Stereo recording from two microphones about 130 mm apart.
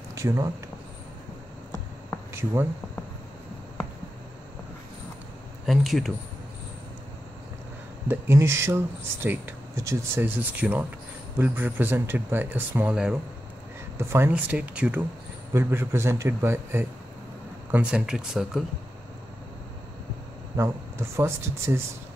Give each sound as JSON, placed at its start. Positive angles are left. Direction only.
{"t": 0.1, "sound": "speech", "side_deg": -25}
{"t": 5.7, "sound": "speech", "side_deg": 0}
{"t": 8.1, "sound": "speech", "side_deg": -20}
{"t": 13.9, "sound": "a man's voice", "side_deg": -20}
{"t": 20.5, "sound": "a man's voice", "side_deg": -20}